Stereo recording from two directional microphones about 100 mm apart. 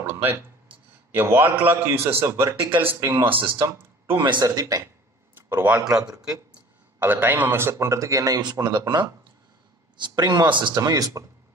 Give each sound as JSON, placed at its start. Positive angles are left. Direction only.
{"t": 0.0, "sound": "a sound", "side_deg": -20}
{"t": 1.1, "sound": "a man's voice", "side_deg": -20}
{"t": 4.2, "sound": "a man's voice", "side_deg": -45}
{"t": 5.3, "sound": "a sound", "side_deg": -20}
{"t": 6.2, "sound": "a man's voice", "side_deg": -15}
{"t": 7.7, "sound": "a man's voice", "side_deg": -30}
{"t": 10.8, "sound": "speech", "side_deg": -35}